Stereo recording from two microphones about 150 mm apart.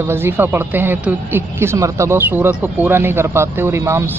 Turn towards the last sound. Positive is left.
turn(degrees=-15)  # may be behind; listen again after turning